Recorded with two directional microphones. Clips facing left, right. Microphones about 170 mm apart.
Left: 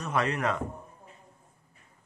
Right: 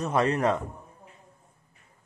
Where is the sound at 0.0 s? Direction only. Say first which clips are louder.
Right 5 dB; 35° right (ahead or behind).